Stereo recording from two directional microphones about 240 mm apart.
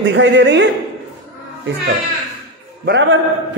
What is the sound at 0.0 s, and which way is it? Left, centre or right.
Speech, right.